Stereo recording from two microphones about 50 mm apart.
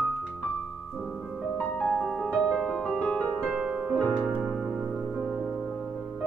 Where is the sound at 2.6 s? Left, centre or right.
Centre.